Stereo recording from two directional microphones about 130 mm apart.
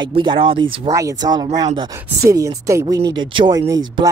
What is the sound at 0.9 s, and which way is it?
Speech, 25° right (ahead or behind).